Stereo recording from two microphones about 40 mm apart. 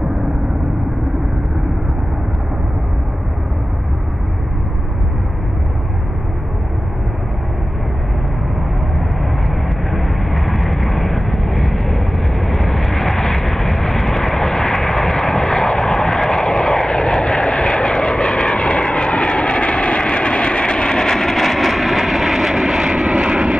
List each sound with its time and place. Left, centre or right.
9.8 s vehicle: centre; by 23.5 s right